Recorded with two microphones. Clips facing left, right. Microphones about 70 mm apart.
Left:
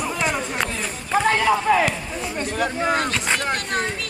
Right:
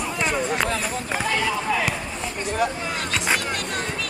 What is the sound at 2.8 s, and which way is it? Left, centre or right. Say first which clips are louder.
Speech: left 7 dB; left.